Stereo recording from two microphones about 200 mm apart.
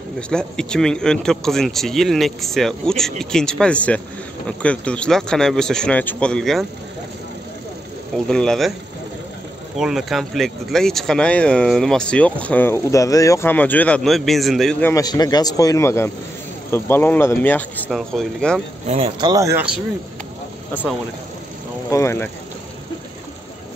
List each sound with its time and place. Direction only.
0.3 s speech: 5° left (ahead or behind)
8.3 s speech: 5° left (ahead or behind)
9.8 s speech: centre (ahead or behind)
18.9 s speech: 30° right (ahead or behind)
21.9 s speech: 15° left (ahead or behind)